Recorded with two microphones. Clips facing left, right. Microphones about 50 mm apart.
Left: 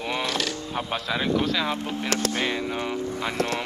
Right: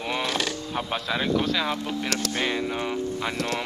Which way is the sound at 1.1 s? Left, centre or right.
Centre.